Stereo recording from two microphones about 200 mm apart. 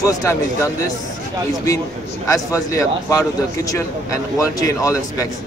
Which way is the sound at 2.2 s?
15° left (ahead or behind).